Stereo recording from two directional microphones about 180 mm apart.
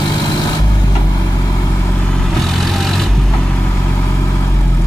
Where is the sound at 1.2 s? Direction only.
15° left (ahead or behind).